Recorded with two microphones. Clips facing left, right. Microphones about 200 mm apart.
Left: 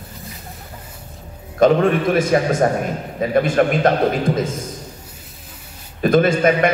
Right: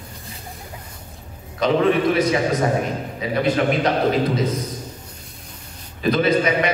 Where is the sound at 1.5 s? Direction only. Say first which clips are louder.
Left 3 dB; 50° left (ahead or behind).